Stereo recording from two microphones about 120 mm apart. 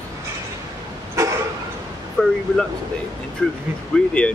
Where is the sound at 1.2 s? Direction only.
25° right (ahead or behind).